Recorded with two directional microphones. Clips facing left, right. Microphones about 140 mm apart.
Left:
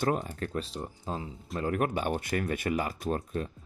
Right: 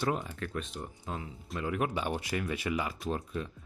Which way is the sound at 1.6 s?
50° left (ahead or behind).